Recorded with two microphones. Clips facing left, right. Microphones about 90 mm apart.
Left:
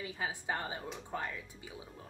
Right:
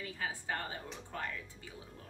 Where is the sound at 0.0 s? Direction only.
20° left (ahead or behind).